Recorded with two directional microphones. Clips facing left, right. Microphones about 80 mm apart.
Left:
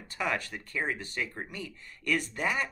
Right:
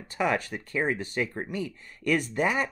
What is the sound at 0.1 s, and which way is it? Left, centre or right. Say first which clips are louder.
Speech: right 5 dB; right.